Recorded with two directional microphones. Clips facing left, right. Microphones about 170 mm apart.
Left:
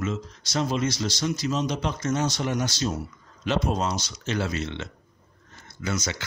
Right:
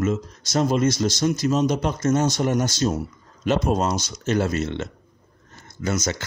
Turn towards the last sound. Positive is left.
turn(degrees=-45)  # may be behind; listen again after turning